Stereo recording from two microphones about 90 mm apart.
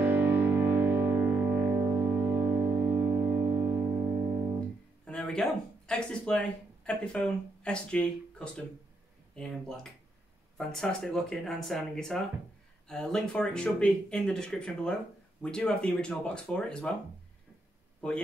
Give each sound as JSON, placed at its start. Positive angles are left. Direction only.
{"t": 0.0, "sound": "music", "side_deg": -20}
{"t": 5.0, "sound": "speech", "side_deg": 10}